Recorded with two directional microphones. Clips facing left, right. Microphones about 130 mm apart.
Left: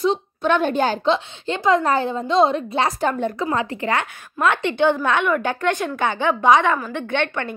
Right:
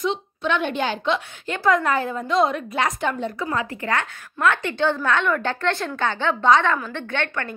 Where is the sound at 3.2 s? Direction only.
50° left (ahead or behind).